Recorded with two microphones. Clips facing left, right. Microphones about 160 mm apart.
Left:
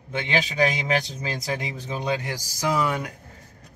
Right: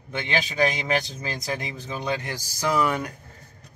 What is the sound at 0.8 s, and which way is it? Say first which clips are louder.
Speech: left 1 dB; 20° left (ahead or behind).